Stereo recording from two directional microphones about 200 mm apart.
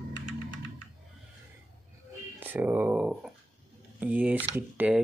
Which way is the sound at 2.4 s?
10° right (ahead or behind).